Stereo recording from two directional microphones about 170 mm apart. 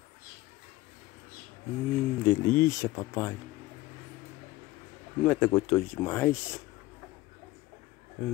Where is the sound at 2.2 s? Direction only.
15° left (ahead or behind).